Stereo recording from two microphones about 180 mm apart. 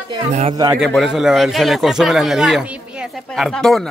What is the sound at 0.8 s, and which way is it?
A man's voice, centre (ahead or behind).